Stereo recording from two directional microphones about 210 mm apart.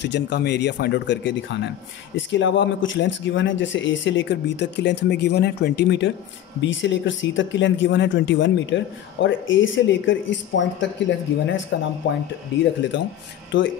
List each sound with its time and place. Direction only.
0.0 s speech: 55° left (ahead or behind)